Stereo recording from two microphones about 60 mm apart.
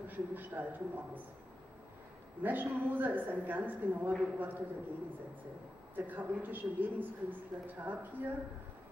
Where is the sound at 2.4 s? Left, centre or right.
Right.